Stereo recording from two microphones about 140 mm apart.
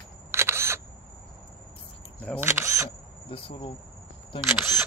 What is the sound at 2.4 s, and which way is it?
Speech, 20° right (ahead or behind).